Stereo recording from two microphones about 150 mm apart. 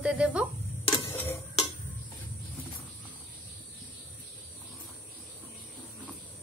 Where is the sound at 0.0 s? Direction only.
5° right (ahead or behind).